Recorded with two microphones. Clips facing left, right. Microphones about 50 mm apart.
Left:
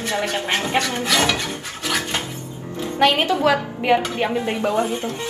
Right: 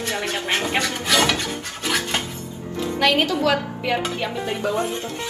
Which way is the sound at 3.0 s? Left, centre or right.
Left.